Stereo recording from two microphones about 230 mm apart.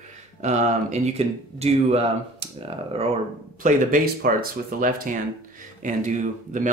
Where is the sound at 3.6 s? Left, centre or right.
Right.